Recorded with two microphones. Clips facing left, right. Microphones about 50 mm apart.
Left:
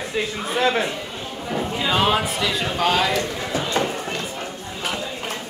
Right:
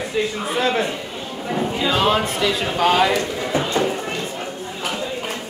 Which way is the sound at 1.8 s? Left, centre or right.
Centre.